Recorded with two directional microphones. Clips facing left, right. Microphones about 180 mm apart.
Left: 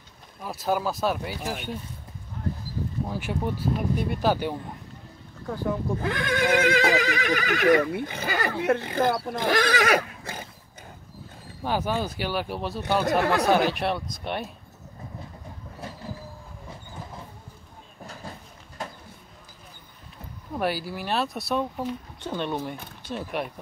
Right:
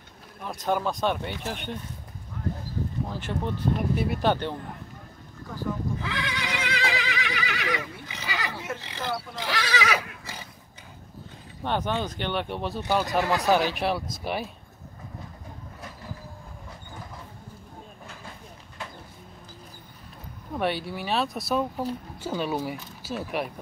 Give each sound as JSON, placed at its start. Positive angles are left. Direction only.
{"t": 0.4, "sound": "speech", "side_deg": 5}
{"t": 3.1, "sound": "speech", "side_deg": 10}
{"t": 5.5, "sound": "speech", "side_deg": 50}
{"t": 11.6, "sound": "speech", "side_deg": 5}
{"t": 13.2, "sound": "speech", "side_deg": 55}
{"t": 13.5, "sound": "speech", "side_deg": 0}
{"t": 18.8, "sound": "vehicle", "side_deg": 40}
{"t": 20.5, "sound": "speech", "side_deg": 0}